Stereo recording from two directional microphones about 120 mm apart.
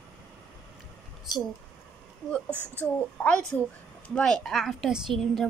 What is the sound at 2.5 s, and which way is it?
Speech, 15° right (ahead or behind).